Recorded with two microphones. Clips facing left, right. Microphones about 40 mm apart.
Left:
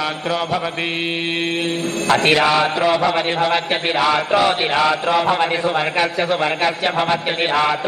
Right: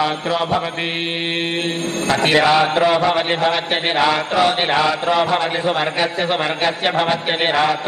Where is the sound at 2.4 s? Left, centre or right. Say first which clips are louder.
Right 2 dB; centre.